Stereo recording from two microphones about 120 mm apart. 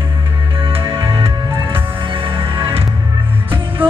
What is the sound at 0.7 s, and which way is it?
Music, 50° right (ahead or behind).